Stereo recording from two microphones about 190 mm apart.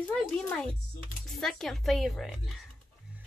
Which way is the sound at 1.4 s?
Centre (ahead or behind).